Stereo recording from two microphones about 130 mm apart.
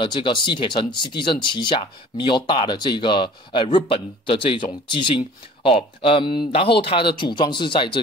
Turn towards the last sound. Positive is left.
turn(degrees=40)  # may be behind; listen again after turning